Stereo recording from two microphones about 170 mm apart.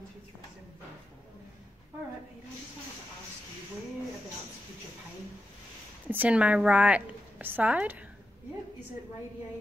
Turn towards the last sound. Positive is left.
turn(degrees=-10)  # may be behind; listen again after turning